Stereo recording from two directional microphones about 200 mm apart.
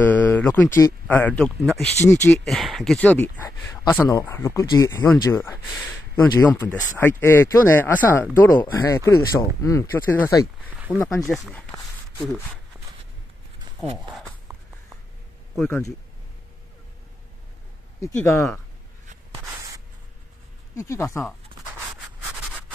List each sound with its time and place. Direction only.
0.0 s a sound: 10° left (ahead or behind)
0.7 s speech: 10° left (ahead or behind)
10.7 s a sound: 10° right (ahead or behind)
11.0 s speech: 15° left (ahead or behind)
11.2 s speech: centre (ahead or behind)
12.7 s walk: 10° right (ahead or behind)
13.7 s a sound: 20° right (ahead or behind)
15.5 s speech: 10° left (ahead or behind)
18.0 s speech: 15° left (ahead or behind)
20.7 s speech: 15° left (ahead or behind)